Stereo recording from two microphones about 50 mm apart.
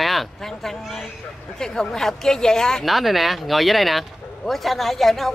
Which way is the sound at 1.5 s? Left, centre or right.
Centre.